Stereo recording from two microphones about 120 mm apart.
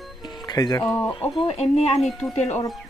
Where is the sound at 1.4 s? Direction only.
60° left (ahead or behind).